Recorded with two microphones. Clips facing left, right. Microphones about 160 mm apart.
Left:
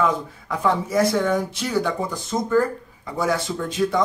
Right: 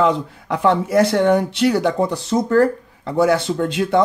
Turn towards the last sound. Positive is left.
turn(degrees=-65)  # may be behind; listen again after turning